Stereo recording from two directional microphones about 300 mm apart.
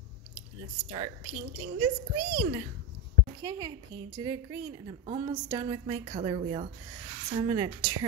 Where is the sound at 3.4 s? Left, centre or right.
Centre.